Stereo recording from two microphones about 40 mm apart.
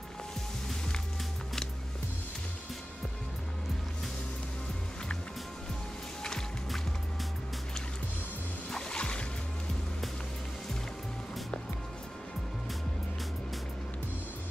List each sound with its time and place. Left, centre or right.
8.6 s music: centre